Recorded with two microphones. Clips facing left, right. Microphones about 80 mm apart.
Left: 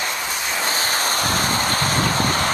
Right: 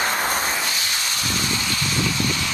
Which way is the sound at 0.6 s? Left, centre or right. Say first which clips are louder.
Left 4 dB; left.